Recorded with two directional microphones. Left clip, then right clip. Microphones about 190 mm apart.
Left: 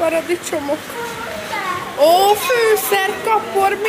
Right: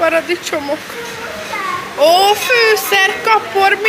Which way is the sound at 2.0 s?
15° left (ahead or behind).